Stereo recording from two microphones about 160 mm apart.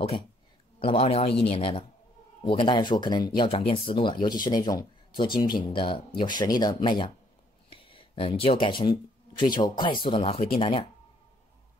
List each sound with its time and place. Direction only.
0.7 s speech: 35° left (ahead or behind)